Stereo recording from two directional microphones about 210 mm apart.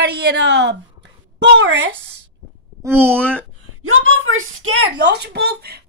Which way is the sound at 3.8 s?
75° right (ahead or behind).